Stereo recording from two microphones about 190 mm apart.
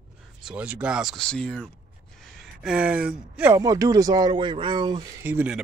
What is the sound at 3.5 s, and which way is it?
Speech, 20° right (ahead or behind).